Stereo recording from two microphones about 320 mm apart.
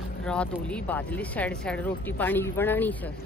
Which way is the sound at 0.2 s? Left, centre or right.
Centre.